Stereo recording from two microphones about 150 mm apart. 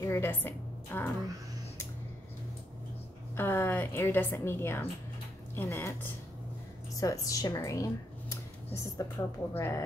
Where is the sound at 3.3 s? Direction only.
15° left (ahead or behind).